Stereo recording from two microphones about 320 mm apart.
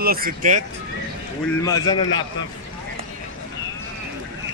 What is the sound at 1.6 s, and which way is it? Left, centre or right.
Speech, centre.